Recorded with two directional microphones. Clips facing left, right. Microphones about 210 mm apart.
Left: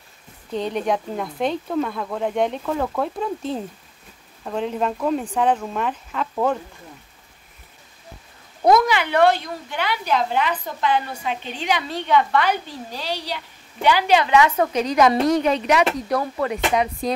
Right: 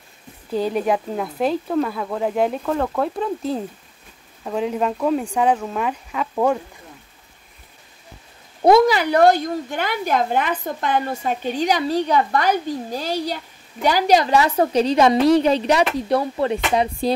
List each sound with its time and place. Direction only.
0.5 s a woman's voice: 5° right (ahead or behind)
8.6 s a woman's voice: 30° right (ahead or behind)